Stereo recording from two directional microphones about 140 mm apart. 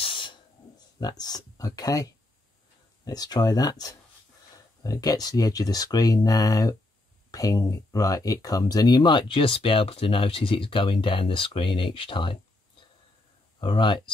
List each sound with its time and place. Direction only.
0.0 s a sound: 35° left (ahead or behind)
0.9 s speech: 30° left (ahead or behind)
3.1 s speech: 25° left (ahead or behind)
13.6 s speech: 35° left (ahead or behind)